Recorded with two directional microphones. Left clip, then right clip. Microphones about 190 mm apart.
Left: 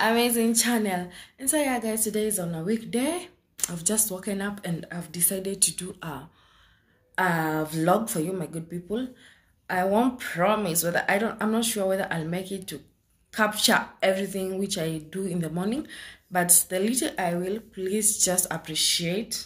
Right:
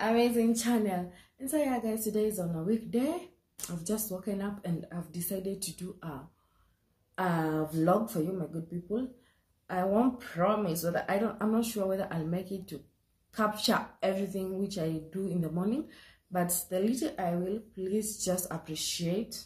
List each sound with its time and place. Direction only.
0.0 s speech: 5° right (ahead or behind)
7.2 s speech: 5° right (ahead or behind)
9.7 s speech: 10° right (ahead or behind)